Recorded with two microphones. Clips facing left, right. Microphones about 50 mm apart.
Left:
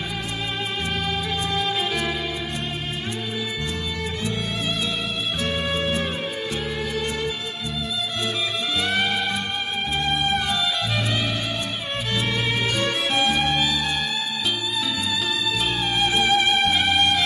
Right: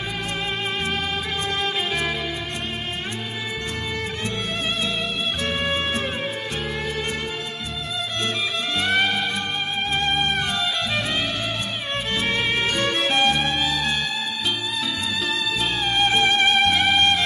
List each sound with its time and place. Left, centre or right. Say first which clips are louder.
5.4 s music: even; centre
8.7 s music: right 3 dB; centre
12.2 s music: right 2 dB; centre
15.6 s music: right 3 dB; centre